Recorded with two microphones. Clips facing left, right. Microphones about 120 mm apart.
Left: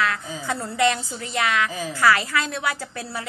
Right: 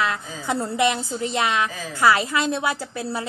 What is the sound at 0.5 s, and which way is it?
A woman's voice, 20° right (ahead or behind).